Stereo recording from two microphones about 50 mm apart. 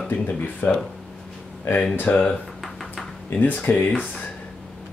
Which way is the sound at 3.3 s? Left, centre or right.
Left.